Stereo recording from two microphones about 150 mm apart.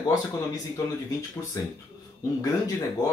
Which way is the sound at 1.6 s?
20° left (ahead or behind).